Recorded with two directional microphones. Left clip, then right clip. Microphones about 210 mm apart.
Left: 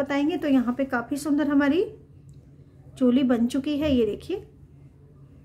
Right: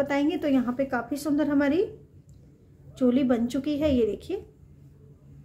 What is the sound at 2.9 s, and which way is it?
A woman's voice, 15° left (ahead or behind).